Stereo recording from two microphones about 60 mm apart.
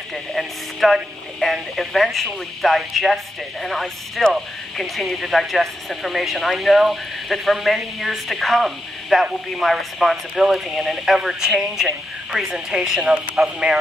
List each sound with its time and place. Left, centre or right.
0.1 s speech: centre